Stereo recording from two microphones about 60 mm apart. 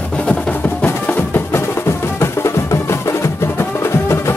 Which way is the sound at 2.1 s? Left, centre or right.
Left.